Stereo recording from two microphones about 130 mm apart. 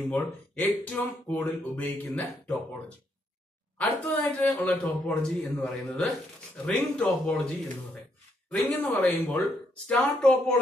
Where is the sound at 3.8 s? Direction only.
10° left (ahead or behind).